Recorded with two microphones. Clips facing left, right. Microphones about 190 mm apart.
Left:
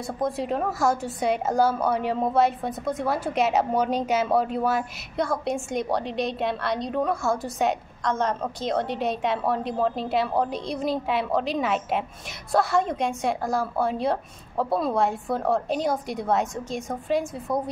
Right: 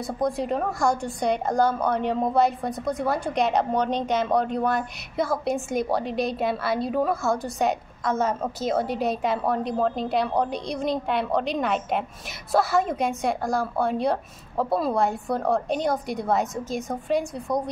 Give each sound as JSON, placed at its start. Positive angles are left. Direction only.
{"t": 0.0, "sound": "a woman's voice", "side_deg": 0}